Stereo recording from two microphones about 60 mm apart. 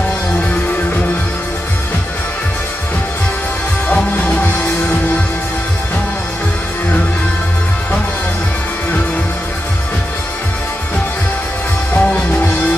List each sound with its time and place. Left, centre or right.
3.9 s music: left
11.9 s music: centre